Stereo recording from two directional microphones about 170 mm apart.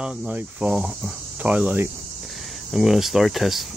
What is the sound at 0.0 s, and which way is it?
Cricket, 10° right (ahead or behind).